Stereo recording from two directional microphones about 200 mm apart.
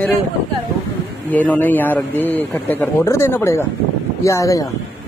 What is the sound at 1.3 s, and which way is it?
A man's voice, 10° left (ahead or behind).